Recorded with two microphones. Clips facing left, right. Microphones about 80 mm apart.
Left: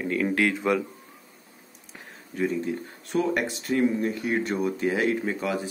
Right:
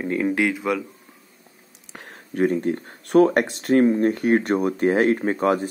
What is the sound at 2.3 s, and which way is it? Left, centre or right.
Speech, right.